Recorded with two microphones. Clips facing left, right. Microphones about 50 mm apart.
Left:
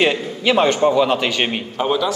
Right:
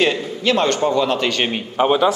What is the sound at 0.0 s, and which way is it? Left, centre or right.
A man's voice, centre.